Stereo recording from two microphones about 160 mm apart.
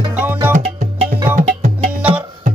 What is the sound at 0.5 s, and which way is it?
Music, 45° right (ahead or behind).